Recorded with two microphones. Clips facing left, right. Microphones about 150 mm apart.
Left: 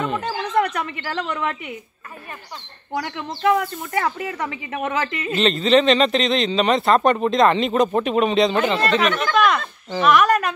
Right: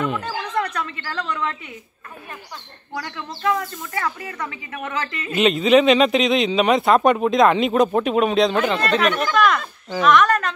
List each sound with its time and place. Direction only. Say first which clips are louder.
0.6 s speech: left 5 dB; 15° left (ahead or behind)
2.9 s speech: left 4 dB; 15° left (ahead or behind)
5.3 s speech: right 2 dB; 10° right (ahead or behind)
10.0 s speech: even; 10° left (ahead or behind)